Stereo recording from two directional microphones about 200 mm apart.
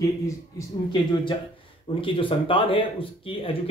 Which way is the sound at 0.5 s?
25° left (ahead or behind).